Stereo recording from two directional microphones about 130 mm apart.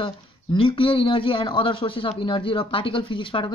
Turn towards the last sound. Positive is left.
turn(degrees=40)  # may be behind; listen again after turning